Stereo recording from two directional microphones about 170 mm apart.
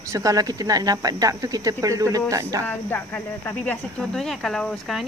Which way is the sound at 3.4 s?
10° left (ahead or behind).